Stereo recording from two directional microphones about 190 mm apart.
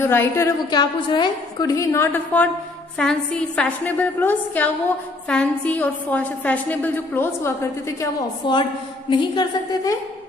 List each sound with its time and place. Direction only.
0.0 s a woman's voice: 15° left (ahead or behind)
8.0 s a woman's voice: 25° left (ahead or behind)